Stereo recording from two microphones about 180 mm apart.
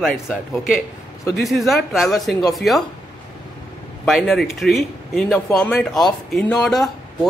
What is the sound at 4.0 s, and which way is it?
A woman's voice, centre (ahead or behind).